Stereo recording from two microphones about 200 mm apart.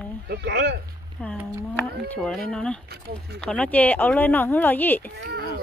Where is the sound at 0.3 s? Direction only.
55° right (ahead or behind).